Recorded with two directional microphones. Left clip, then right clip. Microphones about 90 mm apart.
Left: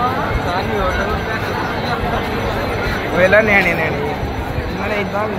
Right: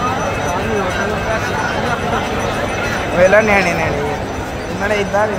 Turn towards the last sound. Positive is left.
turn(degrees=-55)  # may be behind; listen again after turning